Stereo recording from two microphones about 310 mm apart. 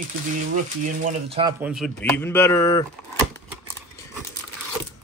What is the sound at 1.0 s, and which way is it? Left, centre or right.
Speech, centre.